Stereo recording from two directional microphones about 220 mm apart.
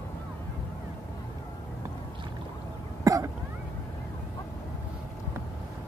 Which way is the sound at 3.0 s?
15° right (ahead or behind).